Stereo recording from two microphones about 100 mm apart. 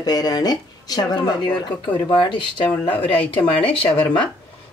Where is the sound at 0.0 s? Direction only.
40° left (ahead or behind).